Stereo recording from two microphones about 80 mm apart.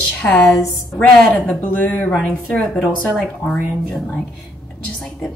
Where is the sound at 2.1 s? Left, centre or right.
Centre.